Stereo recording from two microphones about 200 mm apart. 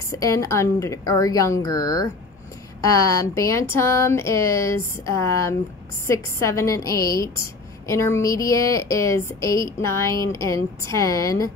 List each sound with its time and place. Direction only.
0.1 s a woman's voice: 15° left (ahead or behind)